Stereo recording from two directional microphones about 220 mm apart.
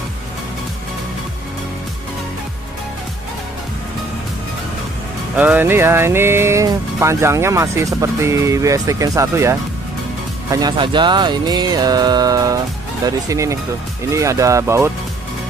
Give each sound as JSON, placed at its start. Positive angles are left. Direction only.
{"t": 5.3, "sound": "speech", "side_deg": -5}